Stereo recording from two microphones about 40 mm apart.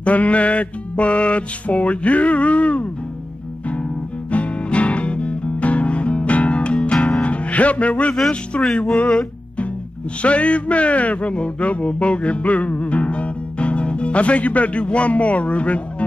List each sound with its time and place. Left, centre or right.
0.0 s music: left
4.3 s music: left
10.2 s a man's voice: left